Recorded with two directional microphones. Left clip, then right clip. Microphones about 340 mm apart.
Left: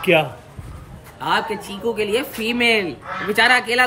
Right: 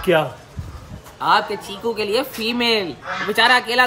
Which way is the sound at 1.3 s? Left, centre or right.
Right.